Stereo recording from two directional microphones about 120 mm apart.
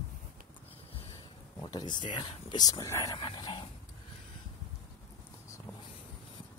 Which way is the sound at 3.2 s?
40° left (ahead or behind).